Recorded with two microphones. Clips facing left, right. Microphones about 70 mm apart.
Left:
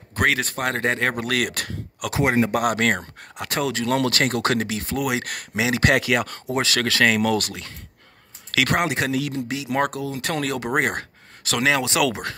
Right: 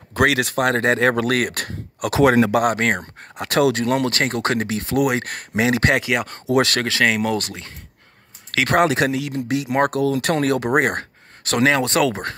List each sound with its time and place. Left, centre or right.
0.2 s speech: right
1.2 s speech: right
2.1 s speech: right
2.6 s speech: right
3.3 s speech: right
3.8 s speech: right
4.8 s speech: right
5.1 s speech: right
5.6 s speech: right
5.9 s speech: right
8.7 s speech: right
10.0 s speech: right
10.3 s speech: right